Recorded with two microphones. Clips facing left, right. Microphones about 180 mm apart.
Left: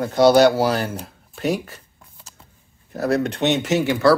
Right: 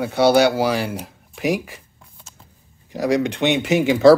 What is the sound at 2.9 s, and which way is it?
Speech, 15° right (ahead or behind).